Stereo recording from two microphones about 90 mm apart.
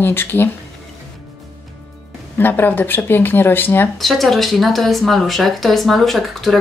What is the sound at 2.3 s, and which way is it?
Speech, 25° left (ahead or behind).